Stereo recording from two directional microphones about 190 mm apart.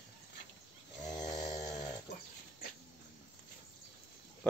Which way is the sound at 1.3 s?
20° left (ahead or behind).